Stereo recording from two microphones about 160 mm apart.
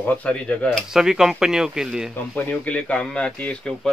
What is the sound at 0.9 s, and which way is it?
Speech, 5° right (ahead or behind).